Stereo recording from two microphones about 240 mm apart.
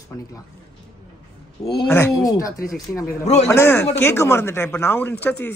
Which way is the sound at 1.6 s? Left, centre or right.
Centre.